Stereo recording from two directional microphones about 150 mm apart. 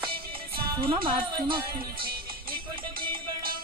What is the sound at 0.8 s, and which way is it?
Speech, 35° right (ahead or behind).